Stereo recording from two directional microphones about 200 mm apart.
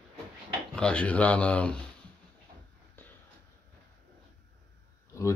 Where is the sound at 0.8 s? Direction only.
5° left (ahead or behind).